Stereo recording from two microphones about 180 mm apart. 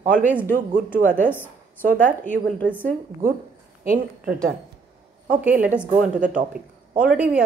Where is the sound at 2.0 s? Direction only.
10° left (ahead or behind).